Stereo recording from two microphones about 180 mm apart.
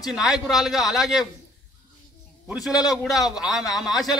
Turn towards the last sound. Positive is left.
turn(degrees=0)  # may be behind; listen again after turning